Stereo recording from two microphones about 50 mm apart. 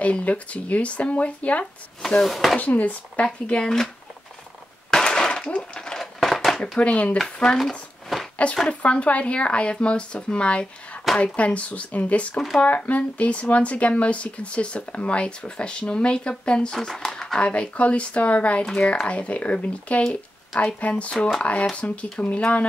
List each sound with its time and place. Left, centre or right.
0.0 s speech: left
2.0 s speech: centre
2.6 s speech: left
3.3 s speech: centre
4.9 s a sound: centre
5.9 s a sound: centre
6.8 s speech: left
8.6 s speech: left
16.7 s speech: centre
17.4 s speech: left
21.1 s speech: centre